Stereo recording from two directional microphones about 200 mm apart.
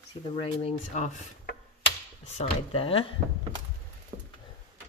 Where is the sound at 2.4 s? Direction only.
30° left (ahead or behind).